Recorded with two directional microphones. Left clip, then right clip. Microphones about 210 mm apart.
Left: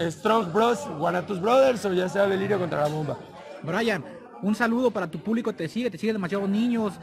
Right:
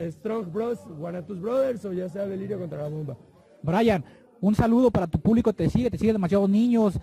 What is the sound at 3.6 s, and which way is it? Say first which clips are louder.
Speech: right 3 dB; 40° right (ahead or behind).